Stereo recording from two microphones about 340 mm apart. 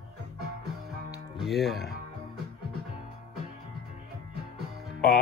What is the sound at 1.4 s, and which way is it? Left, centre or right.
Speech, centre.